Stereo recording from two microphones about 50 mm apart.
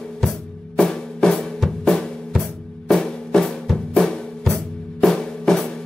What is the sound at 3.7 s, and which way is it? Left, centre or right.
Drum, centre.